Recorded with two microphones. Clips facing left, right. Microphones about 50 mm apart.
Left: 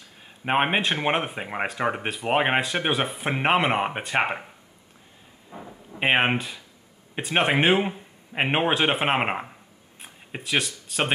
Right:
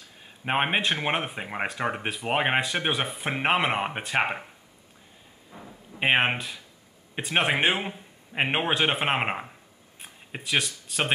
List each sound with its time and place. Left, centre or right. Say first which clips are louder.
0.5 s speech: left 2 dB; centre
5.5 s a sound: left 4 dB; centre
5.9 s speech: left 2 dB; centre